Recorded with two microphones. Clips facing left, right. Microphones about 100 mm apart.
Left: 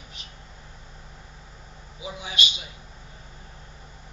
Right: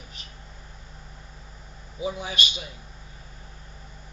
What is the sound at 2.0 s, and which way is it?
Speech, 45° right (ahead or behind).